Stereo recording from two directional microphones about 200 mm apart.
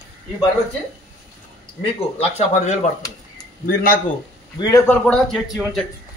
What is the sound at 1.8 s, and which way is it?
Speech, 30° left (ahead or behind).